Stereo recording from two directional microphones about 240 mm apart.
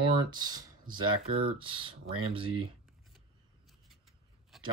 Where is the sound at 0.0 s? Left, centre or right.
Centre.